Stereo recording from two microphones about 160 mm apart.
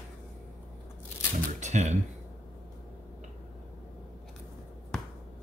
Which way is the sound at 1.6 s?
45° right (ahead or behind).